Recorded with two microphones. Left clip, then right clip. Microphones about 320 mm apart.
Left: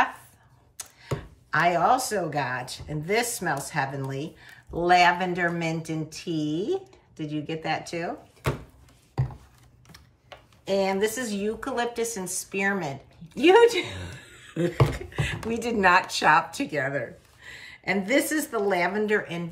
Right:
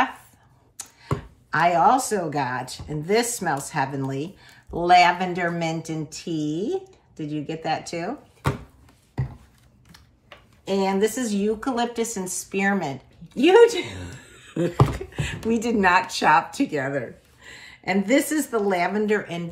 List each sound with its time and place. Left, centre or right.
1.5 s speech: centre
9.9 s speech: centre